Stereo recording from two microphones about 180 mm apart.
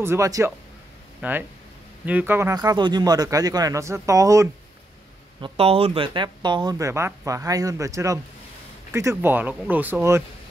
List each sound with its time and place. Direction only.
0.0 s speech: 15° right (ahead or behind)
5.4 s speech: 30° right (ahead or behind); by 10.2 s 10° right (ahead or behind)